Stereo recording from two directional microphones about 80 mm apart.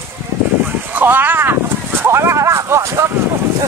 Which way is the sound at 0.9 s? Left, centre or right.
Right.